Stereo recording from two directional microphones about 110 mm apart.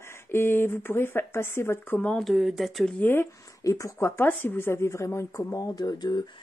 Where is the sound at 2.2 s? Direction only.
5° right (ahead or behind).